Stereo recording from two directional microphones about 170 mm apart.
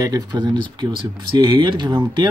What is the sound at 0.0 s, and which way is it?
Speech, 25° right (ahead or behind).